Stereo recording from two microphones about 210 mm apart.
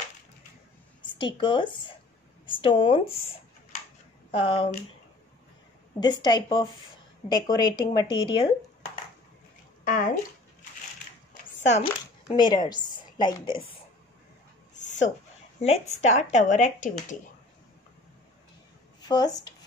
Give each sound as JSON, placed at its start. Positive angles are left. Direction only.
{"t": 1.0, "sound": "speech", "side_deg": 20}
{"t": 4.3, "sound": "speech", "side_deg": 25}
{"t": 5.9, "sound": "speech", "side_deg": 20}
{"t": 9.8, "sound": "bathtub", "side_deg": 40}
{"t": 11.6, "sound": "speech", "side_deg": 30}
{"t": 12.3, "sound": "a woman's voice", "side_deg": 20}
{"t": 14.7, "sound": "a sound", "side_deg": 35}
{"t": 15.6, "sound": "speech", "side_deg": 30}
{"t": 18.9, "sound": "speech", "side_deg": 20}